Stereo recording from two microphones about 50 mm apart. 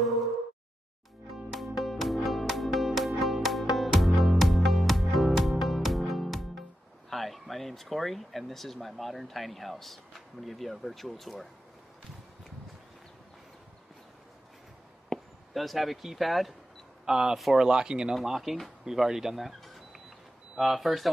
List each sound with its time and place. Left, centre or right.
0.0 s a sound: centre
1.3 s music: centre
7.1 s speech: centre
15.0 s speech: centre
17.0 s speech: centre
17.6 s speech: centre
18.1 s speech: centre